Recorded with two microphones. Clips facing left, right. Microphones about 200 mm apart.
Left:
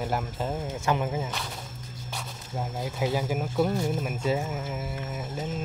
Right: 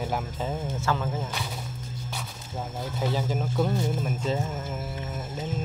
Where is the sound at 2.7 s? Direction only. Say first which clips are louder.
Left 1 dB; 10° left (ahead or behind).